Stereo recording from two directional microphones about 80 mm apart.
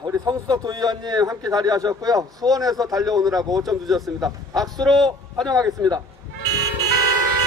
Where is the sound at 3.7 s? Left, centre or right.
Centre.